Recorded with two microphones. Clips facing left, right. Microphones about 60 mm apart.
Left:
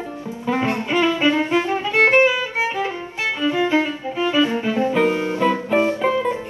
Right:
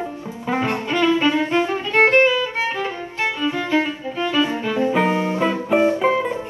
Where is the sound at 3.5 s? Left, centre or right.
Left.